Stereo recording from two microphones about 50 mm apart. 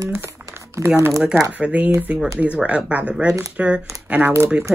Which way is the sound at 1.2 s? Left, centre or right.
Right.